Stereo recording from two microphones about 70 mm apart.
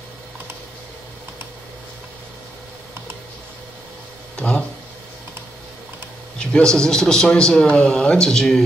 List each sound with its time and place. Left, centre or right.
4.4 s speech: centre
6.3 s a man's voice: centre